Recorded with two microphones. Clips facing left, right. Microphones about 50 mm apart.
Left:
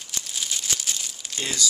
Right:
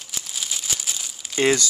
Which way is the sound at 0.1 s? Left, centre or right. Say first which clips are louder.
Even; centre.